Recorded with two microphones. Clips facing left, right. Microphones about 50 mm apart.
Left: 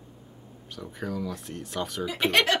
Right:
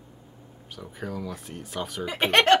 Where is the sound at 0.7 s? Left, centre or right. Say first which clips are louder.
Left 1 dB; centre.